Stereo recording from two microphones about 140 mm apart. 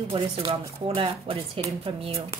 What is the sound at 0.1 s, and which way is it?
Speech, 40° right (ahead or behind).